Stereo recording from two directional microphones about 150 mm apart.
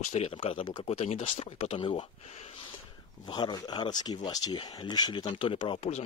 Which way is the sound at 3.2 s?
30° left (ahead or behind).